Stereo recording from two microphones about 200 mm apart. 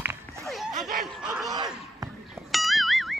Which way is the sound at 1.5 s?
20° right (ahead or behind).